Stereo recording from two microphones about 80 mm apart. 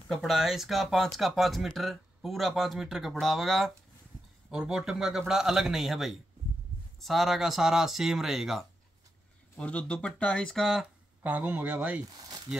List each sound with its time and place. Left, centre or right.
0.1 s speech: centre
4.5 s speech: centre
9.6 s speech: centre
11.2 s speech: right